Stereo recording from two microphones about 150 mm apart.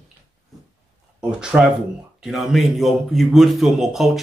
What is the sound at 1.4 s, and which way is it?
A man's voice, 5° right (ahead or behind).